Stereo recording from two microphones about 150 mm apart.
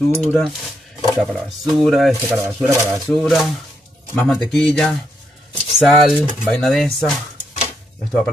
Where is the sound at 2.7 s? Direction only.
15° right (ahead or behind).